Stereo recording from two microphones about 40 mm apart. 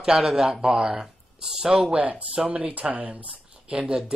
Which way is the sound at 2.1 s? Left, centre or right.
Right.